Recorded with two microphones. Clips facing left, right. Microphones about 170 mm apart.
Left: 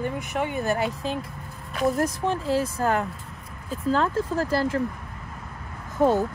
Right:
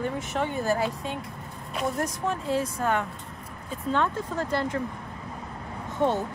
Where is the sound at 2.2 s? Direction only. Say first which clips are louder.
Left 3 dB; 30° left (ahead or behind).